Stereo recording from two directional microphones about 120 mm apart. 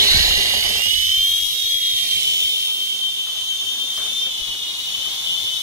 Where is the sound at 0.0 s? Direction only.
25° right (ahead or behind).